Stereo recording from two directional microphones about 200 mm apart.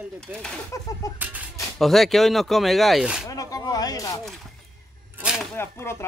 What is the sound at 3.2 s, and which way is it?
Speech, 15° left (ahead or behind).